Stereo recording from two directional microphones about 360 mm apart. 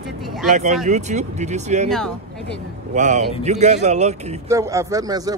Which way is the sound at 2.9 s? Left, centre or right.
Centre.